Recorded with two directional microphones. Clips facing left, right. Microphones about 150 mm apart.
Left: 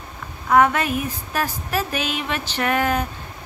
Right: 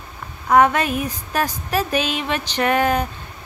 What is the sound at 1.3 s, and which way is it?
Speech, 15° right (ahead or behind).